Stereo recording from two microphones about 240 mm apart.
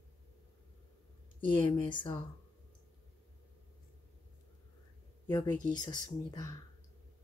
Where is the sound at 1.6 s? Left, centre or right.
Centre.